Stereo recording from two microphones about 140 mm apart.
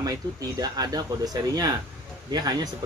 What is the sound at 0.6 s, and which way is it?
Speech, 25° right (ahead or behind).